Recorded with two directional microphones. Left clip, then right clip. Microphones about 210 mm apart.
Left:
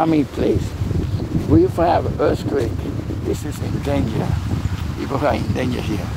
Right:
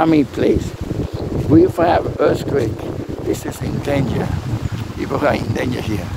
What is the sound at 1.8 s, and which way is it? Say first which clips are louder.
Speech: right 2 dB; 25° right (ahead or behind).